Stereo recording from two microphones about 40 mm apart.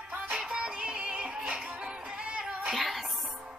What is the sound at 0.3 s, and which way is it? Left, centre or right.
Music, right.